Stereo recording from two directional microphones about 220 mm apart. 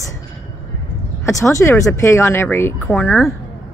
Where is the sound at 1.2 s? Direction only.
15° left (ahead or behind).